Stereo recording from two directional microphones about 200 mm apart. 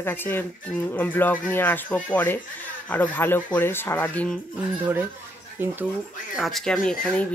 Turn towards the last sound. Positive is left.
turn(degrees=5)  # may be behind; listen again after turning